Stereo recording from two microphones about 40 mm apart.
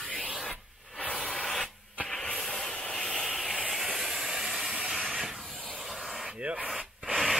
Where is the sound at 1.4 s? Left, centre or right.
Centre.